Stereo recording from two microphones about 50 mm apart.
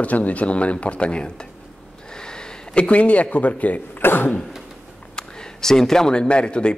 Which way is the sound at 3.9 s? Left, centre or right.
Left.